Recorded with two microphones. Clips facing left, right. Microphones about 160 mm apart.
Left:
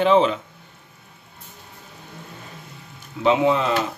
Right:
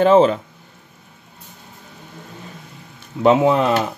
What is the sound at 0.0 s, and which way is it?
Speech, 45° right (ahead or behind).